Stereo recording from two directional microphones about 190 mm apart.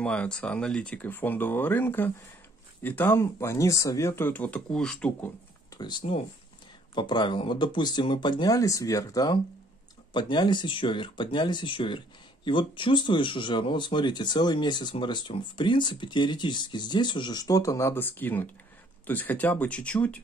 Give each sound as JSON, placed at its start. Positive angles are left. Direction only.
{"t": 0.0, "sound": "speech", "side_deg": 5}
{"t": 5.8, "sound": "speech", "side_deg": 25}